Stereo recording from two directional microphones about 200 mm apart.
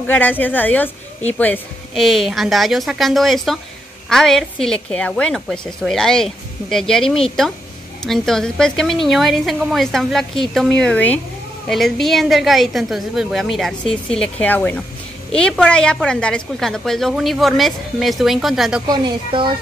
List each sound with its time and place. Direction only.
0.0 s a woman's voice: 10° left (ahead or behind)
18.9 s a woman's voice: 25° right (ahead or behind)